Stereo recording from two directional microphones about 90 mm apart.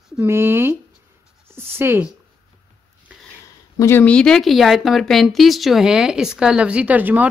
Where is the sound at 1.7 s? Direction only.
25° right (ahead or behind).